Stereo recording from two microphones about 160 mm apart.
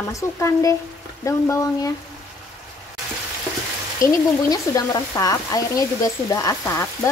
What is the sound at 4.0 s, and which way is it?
Frying, 20° left (ahead or behind).